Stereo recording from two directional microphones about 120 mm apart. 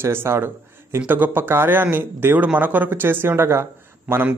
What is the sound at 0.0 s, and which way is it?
A man's voice, 20° right (ahead or behind).